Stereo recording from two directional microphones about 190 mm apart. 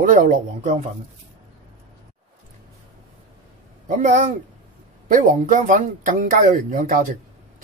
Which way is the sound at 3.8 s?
40° right (ahead or behind).